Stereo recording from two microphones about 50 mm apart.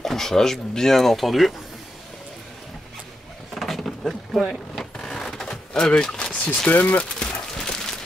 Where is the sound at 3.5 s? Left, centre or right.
Centre.